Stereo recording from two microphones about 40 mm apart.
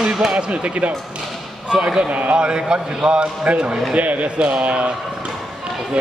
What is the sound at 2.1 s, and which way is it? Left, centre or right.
A man's voice, right.